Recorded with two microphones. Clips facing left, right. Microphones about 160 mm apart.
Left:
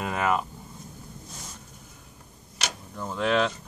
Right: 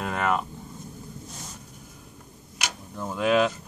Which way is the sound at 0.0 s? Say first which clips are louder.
Even; centre (ahead or behind).